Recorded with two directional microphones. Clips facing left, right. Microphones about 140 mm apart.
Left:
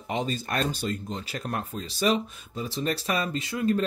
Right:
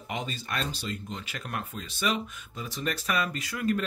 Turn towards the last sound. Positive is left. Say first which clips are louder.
# left 3 dB
turn(degrees=25)  # may be behind; listen again after turning